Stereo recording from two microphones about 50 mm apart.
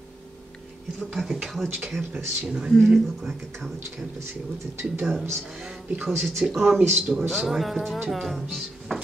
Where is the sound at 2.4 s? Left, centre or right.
Centre.